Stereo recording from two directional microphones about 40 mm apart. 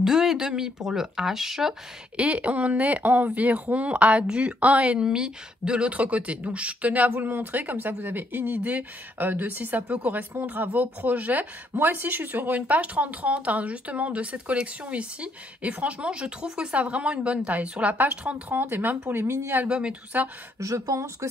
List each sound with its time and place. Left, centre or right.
0.0 s speech: centre
2.1 s speech: right
5.0 s speech: centre; by 7.1 s right
7.1 s speech: right
10.4 s speech: right
11.7 s speech: right
18.5 s speech: right
19.7 s speech: right